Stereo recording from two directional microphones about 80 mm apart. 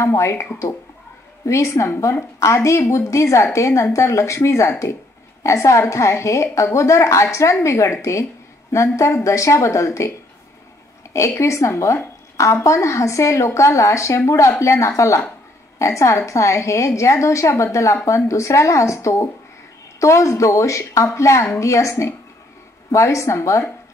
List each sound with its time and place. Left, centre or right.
0.0 s a woman's voice: left
11.1 s a woman's voice: left